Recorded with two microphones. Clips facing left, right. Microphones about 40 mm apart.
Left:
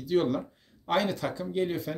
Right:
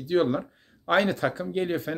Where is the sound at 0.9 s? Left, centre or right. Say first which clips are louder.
Right 5 dB; right.